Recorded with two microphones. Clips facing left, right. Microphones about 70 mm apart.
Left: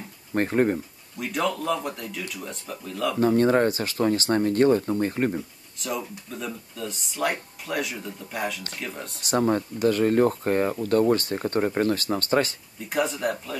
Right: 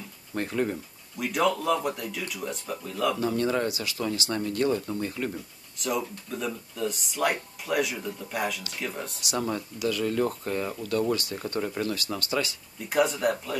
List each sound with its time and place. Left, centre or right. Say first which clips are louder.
0.3 s speech: left 6 dB; left
1.1 s speech: right 1 dB; centre
3.2 s speech: left 7 dB; left
5.8 s speech: right 1 dB; centre
9.2 s speech: left 8 dB; left
12.9 s speech: right 1 dB; centre